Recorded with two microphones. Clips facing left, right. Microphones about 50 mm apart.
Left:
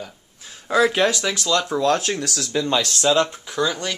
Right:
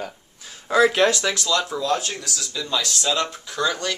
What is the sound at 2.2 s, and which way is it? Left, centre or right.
Speech, left.